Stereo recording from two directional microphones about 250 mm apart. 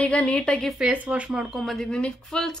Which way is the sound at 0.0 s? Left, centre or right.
Centre.